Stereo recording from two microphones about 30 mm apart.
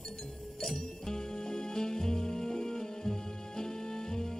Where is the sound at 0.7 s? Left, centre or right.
Left.